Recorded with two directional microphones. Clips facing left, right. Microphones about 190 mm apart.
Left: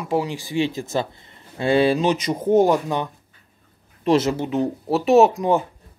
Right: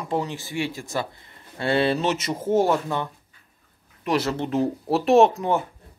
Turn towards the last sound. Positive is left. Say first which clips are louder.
# left 4 dB
turn(degrees=15)  # may be behind; listen again after turning